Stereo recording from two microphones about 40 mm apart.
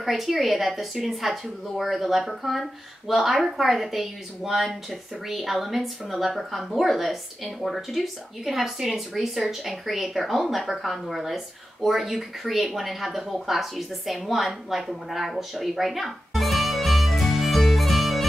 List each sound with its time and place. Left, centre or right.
0.0 s speech: centre